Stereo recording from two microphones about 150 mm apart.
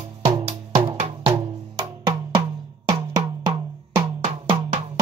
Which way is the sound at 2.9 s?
30° right (ahead or behind).